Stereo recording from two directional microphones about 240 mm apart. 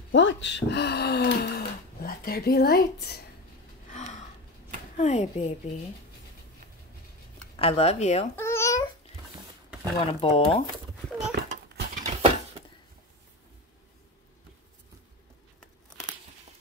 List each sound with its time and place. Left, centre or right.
0.1 s speech: left
3.9 s gasp: left
4.9 s speech: left
7.5 s speech: left
8.4 s babbling: centre
10.2 s speech: left
11.3 s a sound: right
12.0 s a sound: right